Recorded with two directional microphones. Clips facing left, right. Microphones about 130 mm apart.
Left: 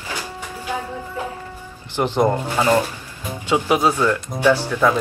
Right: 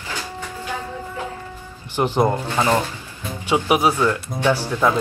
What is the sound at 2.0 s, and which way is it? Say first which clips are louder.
Speech: even; 15° right (ahead or behind).